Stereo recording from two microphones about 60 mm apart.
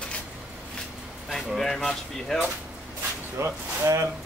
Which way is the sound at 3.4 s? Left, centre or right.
Right.